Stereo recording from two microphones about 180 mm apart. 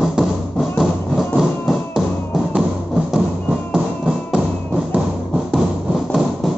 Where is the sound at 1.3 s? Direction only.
Centre (ahead or behind).